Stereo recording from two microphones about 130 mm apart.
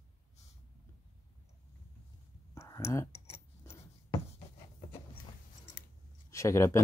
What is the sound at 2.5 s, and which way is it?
Clicking, 20° left (ahead or behind).